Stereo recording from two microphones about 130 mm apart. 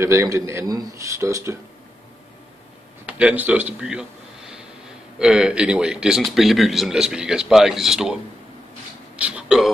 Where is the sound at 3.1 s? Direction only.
10° right (ahead or behind).